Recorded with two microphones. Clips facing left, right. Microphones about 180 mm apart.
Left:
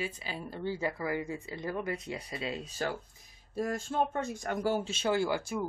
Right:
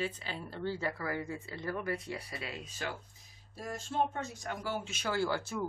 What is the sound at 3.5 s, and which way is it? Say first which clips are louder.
Speech: left 4 dB; 55° left (ahead or behind).